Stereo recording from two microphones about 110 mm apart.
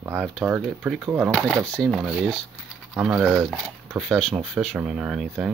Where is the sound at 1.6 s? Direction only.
5° left (ahead or behind).